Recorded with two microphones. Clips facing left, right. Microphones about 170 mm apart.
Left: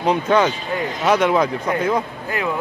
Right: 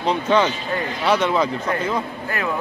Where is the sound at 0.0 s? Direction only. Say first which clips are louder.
Left 2 dB; 10° left (ahead or behind).